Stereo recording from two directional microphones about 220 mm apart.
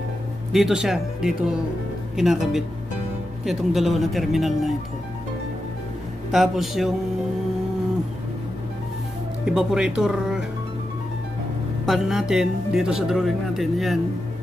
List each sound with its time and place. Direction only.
0.5 s speech: centre (ahead or behind)
6.3 s speech: centre (ahead or behind)
9.5 s speech: centre (ahead or behind)
11.8 s speech: centre (ahead or behind)